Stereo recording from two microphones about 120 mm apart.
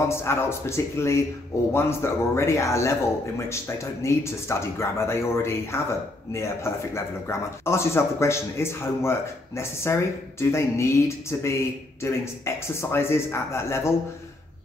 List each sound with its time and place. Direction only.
0.1 s a man's voice: 20° left (ahead or behind)